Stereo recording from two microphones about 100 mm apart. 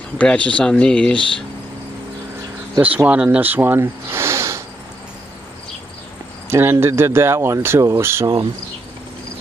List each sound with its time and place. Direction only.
0.2 s speech: 10° left (ahead or behind)
2.8 s speech: 15° right (ahead or behind)
6.5 s speech: 25° right (ahead or behind)